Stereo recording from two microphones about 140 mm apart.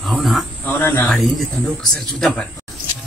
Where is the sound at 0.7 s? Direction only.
15° left (ahead or behind).